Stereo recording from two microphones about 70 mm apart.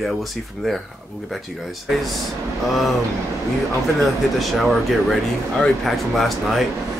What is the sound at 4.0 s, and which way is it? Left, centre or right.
Speech, centre.